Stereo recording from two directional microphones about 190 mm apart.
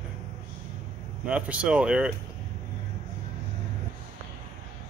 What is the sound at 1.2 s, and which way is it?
Speech, 5° right (ahead or behind).